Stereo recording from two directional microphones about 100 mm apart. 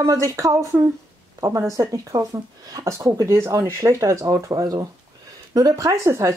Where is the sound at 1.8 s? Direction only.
35° right (ahead or behind).